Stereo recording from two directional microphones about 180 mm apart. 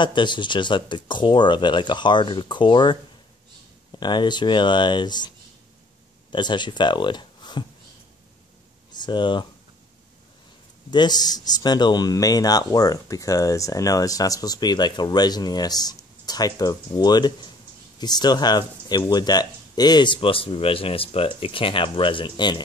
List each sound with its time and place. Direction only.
0.0 s speech: 25° left (ahead or behind)
6.3 s speech: 25° left (ahead or behind)
9.0 s speech: 25° left (ahead or behind)
10.9 s speech: 25° left (ahead or behind)